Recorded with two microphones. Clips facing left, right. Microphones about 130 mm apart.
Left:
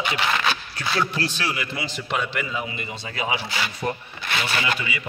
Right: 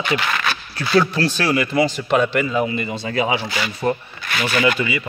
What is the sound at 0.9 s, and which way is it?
A man's voice, 35° right (ahead or behind).